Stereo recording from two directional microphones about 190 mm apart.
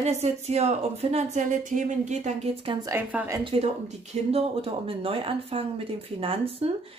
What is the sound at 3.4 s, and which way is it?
Speech, 30° right (ahead or behind).